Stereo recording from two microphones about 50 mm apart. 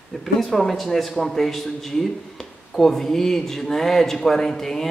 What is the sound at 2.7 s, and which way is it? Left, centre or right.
A man's voice, centre.